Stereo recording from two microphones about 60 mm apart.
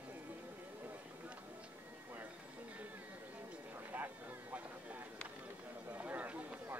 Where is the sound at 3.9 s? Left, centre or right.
Right.